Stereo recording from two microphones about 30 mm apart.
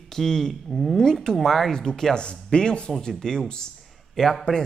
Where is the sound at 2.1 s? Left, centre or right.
Left.